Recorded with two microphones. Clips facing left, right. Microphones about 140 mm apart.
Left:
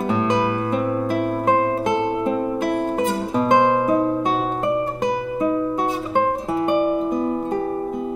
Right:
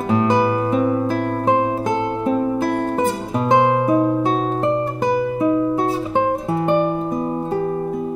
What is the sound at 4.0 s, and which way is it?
Music, 15° right (ahead or behind).